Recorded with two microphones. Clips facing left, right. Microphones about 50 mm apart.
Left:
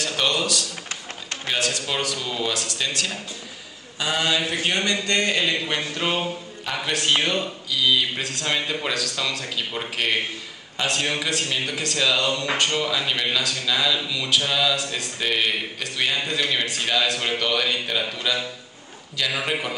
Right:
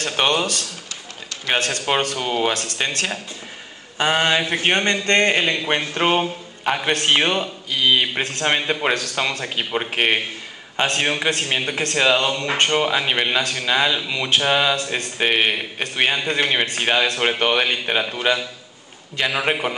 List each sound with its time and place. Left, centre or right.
0.0 s a sound: right
0.8 s tap: left
1.5 s a man's voice: right